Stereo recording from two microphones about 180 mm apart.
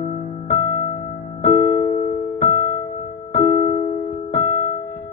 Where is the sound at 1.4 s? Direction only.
40° left (ahead or behind).